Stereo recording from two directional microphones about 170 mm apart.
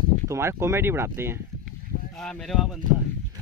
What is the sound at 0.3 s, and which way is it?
Speech, 15° right (ahead or behind).